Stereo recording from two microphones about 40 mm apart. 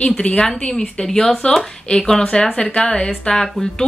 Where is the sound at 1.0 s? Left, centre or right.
Centre.